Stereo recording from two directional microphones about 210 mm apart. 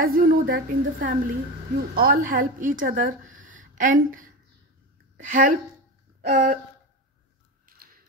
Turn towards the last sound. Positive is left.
turn(degrees=-35)  # may be behind; listen again after turning